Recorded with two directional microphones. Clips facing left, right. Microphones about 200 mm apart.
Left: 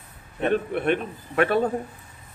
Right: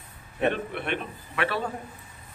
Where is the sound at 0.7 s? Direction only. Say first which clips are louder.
Left 7 dB; 45° left (ahead or behind).